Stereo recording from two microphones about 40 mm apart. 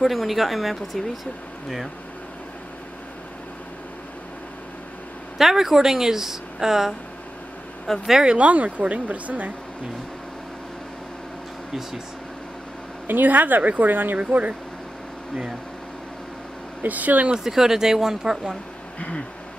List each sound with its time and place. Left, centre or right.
0.0 s speech: centre
5.4 s a woman's voice: centre
7.9 s speech: centre
8.4 s a woman's voice: right
13.0 s a woman's voice: right
14.1 s a woman's voice: right
16.8 s a woman's voice: right
17.4 s a woman's voice: centre
18.9 s a sound: left